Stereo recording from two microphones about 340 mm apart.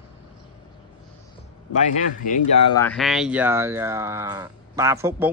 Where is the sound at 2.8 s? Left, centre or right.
Centre.